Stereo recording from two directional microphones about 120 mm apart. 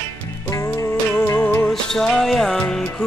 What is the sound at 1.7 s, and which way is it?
Music, 5° left (ahead or behind).